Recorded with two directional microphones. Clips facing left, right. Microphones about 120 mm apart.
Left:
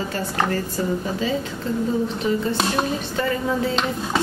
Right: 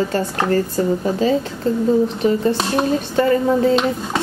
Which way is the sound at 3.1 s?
40° right (ahead or behind).